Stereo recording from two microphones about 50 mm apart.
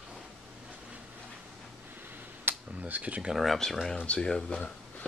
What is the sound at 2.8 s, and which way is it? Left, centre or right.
Speech, right.